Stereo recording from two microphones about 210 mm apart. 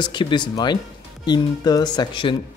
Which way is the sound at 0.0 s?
20° left (ahead or behind).